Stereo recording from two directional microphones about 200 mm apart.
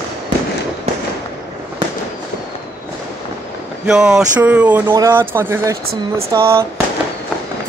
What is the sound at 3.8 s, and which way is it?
Speech, 5° right (ahead or behind).